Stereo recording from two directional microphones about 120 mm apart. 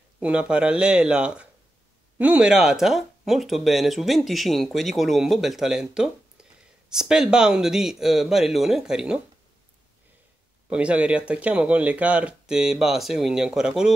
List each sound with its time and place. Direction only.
0.2 s speech: 10° right (ahead or behind)
10.7 s speech: 10° right (ahead or behind)